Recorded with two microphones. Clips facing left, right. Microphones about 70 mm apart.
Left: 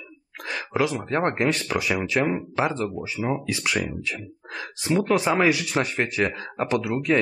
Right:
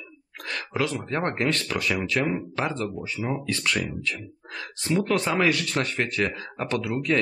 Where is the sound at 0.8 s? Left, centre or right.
Centre.